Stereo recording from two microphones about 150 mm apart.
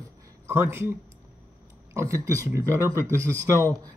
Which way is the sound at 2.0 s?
20° right (ahead or behind).